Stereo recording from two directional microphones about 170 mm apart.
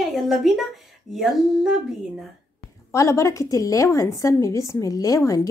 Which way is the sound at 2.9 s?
15° left (ahead or behind).